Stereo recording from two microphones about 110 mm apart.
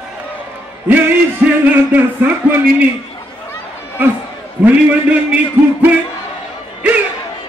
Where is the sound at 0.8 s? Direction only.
15° right (ahead or behind).